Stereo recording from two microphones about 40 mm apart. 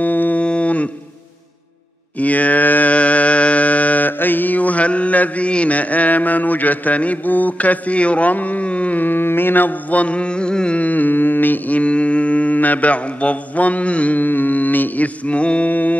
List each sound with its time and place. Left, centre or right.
0.0 s livestock: left
0.4 s cattle: left
2.1 s mantra: left
4.2 s mantra: left
9.0 s mantra: left
10.8 s humming: left
14.1 s mantra: left
15.2 s mantra: left
15.7 s music: left